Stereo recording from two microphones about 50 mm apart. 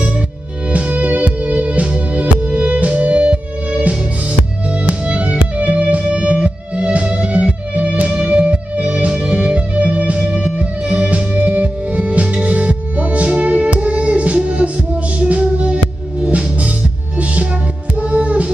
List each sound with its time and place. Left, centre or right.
0.7 s music: right